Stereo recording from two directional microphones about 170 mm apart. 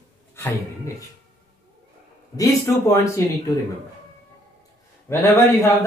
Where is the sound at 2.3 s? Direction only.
20° left (ahead or behind).